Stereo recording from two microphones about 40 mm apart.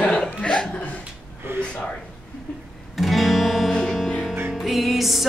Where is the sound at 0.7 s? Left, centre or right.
Left.